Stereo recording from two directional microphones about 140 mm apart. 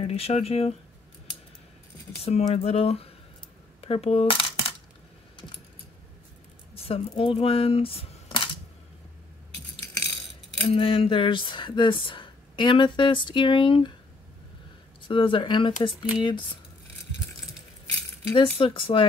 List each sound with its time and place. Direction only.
0.0 s speech: 45° left (ahead or behind)
2.2 s speech: 45° left (ahead or behind)
3.8 s coin: 45° left (ahead or behind)
6.7 s speech: 40° left (ahead or behind)
10.7 s speech: 40° left (ahead or behind)
15.0 s speech: 35° left (ahead or behind)
18.3 s speech: 40° left (ahead or behind)